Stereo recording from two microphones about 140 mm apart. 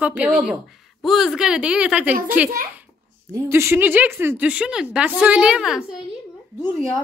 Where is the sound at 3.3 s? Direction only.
20° right (ahead or behind).